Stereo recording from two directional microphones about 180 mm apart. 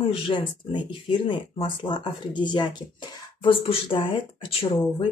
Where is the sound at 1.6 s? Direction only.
25° left (ahead or behind).